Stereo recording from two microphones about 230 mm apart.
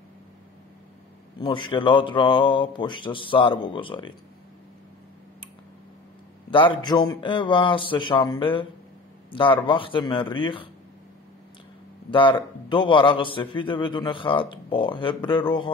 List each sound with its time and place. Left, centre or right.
1.4 s a man's voice: left
6.5 s a man's voice: left
12.1 s a man's voice: left